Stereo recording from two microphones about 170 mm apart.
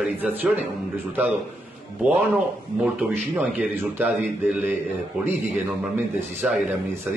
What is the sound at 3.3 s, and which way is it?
Speech, centre (ahead or behind).